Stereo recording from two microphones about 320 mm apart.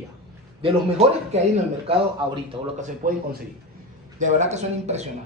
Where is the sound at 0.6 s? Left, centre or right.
Centre.